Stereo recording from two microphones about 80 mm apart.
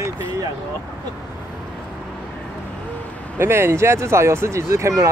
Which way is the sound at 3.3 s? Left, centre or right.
Right.